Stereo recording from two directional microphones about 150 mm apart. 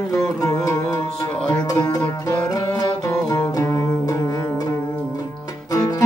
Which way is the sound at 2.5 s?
25° left (ahead or behind).